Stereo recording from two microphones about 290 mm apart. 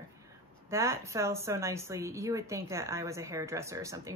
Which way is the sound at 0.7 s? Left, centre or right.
Centre.